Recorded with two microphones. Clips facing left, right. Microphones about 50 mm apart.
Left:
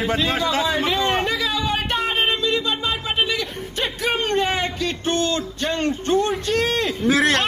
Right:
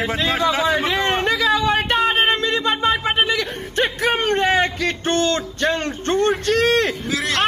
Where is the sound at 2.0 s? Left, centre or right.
Right.